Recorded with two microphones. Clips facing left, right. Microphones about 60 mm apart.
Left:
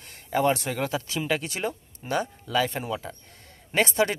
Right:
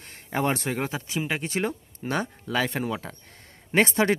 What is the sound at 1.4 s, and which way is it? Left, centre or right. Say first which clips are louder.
Speech: right 3 dB; right.